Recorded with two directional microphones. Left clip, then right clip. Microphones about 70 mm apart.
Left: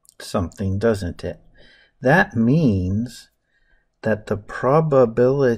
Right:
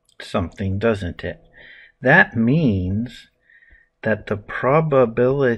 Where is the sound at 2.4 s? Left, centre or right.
Left.